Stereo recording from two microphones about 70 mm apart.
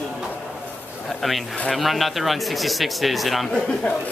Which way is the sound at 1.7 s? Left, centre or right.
Centre.